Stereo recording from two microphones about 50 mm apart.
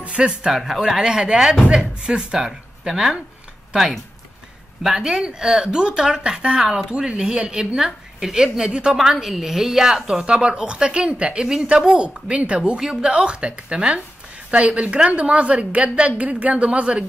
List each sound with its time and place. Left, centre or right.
0.0 s speech: right
0.5 s a woman's voice: centre
2.9 s speech: centre
5.0 s a woman's voice: centre
8.9 s a woman's voice: centre
10.2 s speech: centre